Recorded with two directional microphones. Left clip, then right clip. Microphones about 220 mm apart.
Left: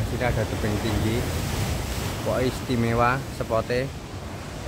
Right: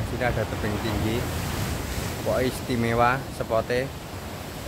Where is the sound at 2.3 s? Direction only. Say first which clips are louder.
Even; 5° left (ahead or behind).